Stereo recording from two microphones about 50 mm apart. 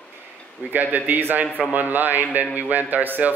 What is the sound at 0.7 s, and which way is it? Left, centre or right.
A man's voice, right.